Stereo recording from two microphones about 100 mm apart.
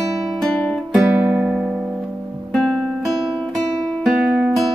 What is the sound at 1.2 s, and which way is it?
Music, 15° right (ahead or behind).